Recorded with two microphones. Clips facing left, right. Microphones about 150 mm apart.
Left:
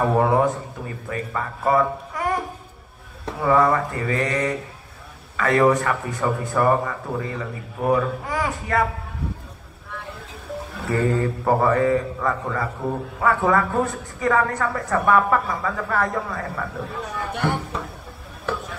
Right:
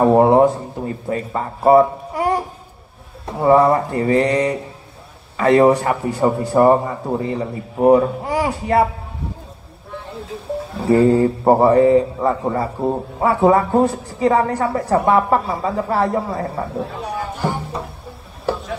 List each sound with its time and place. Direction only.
0.0 s a man's voice: 30° right (ahead or behind)
10.8 s a man's voice: 30° right (ahead or behind)